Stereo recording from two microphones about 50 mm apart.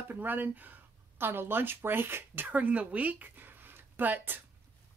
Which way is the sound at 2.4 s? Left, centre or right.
Right.